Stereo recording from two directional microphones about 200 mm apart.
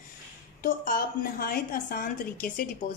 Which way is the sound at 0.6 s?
45° left (ahead or behind).